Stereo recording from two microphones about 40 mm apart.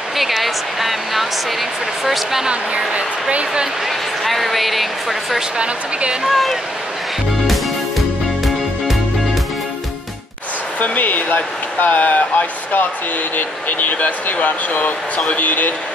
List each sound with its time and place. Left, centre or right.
0.2 s a woman's voice: centre
2.4 s speech: right
4.2 s a woman's voice: centre
5.6 s speech: right
6.2 s a woman's voice: centre
10.8 s speech: left